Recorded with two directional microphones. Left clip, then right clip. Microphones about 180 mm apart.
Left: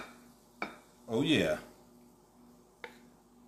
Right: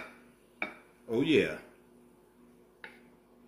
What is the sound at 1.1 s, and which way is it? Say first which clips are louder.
Speech: right 2 dB; 60° left (ahead or behind).